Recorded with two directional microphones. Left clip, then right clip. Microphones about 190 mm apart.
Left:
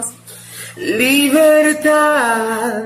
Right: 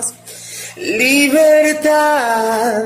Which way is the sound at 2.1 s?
10° left (ahead or behind).